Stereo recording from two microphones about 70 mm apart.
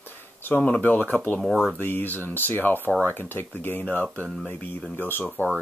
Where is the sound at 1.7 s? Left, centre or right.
Left.